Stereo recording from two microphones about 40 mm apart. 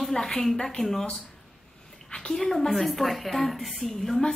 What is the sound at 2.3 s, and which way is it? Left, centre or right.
A woman's voice, centre.